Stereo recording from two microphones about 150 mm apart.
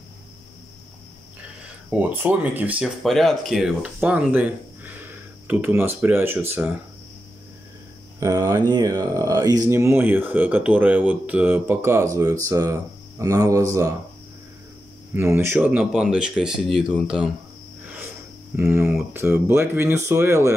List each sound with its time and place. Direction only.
1.9 s speech: 10° right (ahead or behind)
8.2 s speech: 20° right (ahead or behind)
15.1 s speech: 15° right (ahead or behind)
18.6 s speech: 15° right (ahead or behind)